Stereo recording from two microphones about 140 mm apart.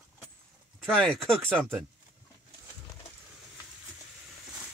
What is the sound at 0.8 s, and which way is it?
Speech, 5° left (ahead or behind).